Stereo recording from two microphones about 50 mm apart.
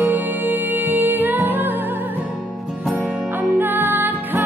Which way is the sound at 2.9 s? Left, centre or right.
Right.